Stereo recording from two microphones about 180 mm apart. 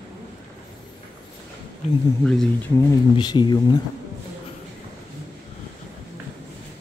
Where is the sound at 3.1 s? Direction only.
25° left (ahead or behind).